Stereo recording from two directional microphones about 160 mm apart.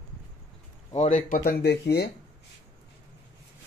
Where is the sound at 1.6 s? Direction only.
85° left.